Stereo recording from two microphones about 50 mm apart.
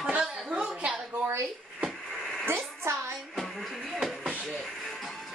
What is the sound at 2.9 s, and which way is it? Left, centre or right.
Speech, right.